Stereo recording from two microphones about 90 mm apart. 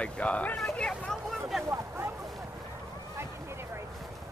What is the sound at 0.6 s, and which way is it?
Vehicle, 5° left (ahead or behind).